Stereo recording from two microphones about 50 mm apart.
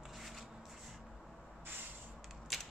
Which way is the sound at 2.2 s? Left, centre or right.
Centre.